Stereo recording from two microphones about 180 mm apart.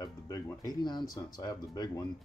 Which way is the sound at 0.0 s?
20° left (ahead or behind).